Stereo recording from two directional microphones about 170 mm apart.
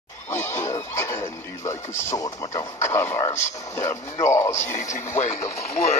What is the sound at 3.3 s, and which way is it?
Speech, 45° left (ahead or behind).